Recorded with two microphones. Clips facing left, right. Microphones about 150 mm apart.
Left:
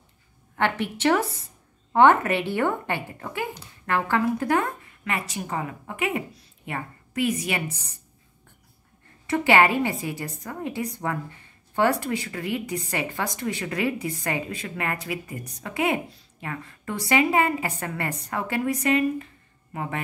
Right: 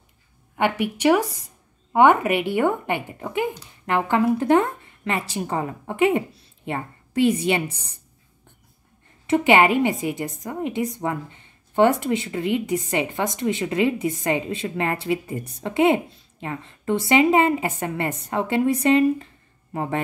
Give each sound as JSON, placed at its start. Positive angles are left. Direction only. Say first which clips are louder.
{"t": 0.6, "sound": "speech", "louder": "right 3 dB", "side_deg": -15}
{"t": 9.3, "sound": "speech", "louder": "right 3 dB", "side_deg": -20}